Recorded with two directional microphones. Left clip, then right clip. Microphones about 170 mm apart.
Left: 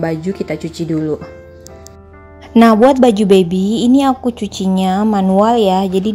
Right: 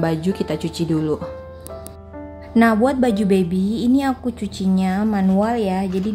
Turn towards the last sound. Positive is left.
turn(degrees=30)  # may be behind; listen again after turning